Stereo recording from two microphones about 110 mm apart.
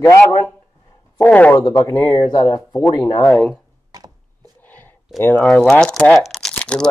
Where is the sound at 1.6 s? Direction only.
30° left (ahead or behind).